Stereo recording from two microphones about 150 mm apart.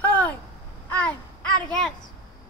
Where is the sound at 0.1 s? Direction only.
10° left (ahead or behind).